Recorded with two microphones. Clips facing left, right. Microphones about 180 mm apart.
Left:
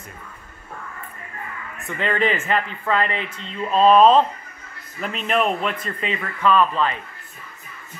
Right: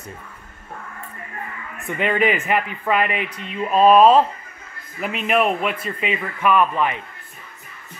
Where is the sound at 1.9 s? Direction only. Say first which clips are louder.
Right 2 dB; 15° right (ahead or behind).